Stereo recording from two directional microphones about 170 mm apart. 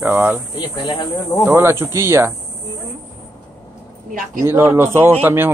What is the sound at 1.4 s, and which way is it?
Speech, 15° right (ahead or behind).